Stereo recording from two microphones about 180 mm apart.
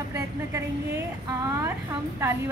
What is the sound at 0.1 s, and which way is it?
A woman's voice, 15° right (ahead or behind).